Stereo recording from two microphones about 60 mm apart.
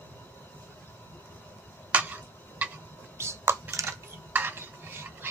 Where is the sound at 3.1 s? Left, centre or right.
Right.